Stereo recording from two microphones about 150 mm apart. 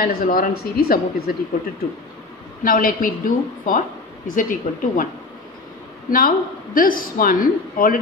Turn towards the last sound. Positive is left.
turn(degrees=65)  # may be behind; listen again after turning